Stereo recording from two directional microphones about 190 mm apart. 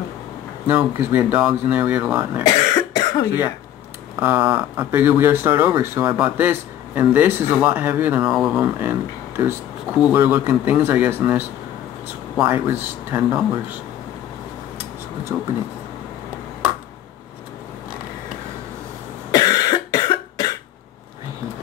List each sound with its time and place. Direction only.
0.7 s speech: 10° right (ahead or behind)
2.4 s cough: 20° left (ahead or behind)
4.2 s speech: 10° right (ahead or behind)
9.9 s speech: 5° right (ahead or behind)
12.4 s speech: 10° right (ahead or behind)
19.3 s cough: 20° left (ahead or behind)